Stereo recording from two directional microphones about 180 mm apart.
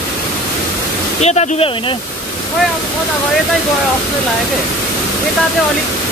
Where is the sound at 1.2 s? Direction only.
40° left (ahead or behind).